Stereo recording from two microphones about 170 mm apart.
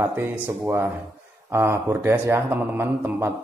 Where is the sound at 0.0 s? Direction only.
15° right (ahead or behind).